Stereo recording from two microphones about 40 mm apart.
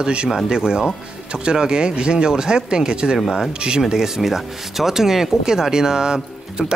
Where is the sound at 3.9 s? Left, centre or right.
Centre.